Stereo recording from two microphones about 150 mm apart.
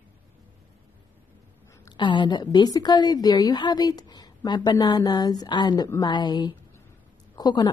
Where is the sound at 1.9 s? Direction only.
30° left (ahead or behind).